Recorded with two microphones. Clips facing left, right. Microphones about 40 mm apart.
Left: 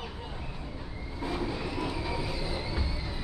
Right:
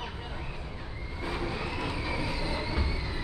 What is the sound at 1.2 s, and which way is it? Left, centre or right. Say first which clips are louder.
Train: left 1 dB; right.